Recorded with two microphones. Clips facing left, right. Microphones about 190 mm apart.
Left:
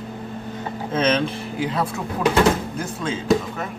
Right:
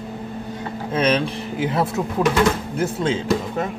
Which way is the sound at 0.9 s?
15° right (ahead or behind).